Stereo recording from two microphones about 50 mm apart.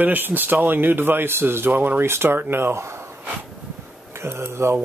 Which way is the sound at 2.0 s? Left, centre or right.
Right.